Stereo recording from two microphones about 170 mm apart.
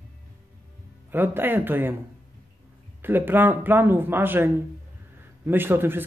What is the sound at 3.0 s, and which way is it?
A man's voice, 10° right (ahead or behind).